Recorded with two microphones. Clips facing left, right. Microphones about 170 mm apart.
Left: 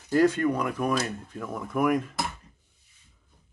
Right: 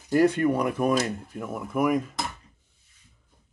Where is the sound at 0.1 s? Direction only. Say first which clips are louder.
Right 1 dB; 15° right (ahead or behind).